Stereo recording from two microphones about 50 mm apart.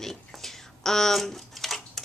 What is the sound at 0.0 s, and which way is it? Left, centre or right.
Speech, centre.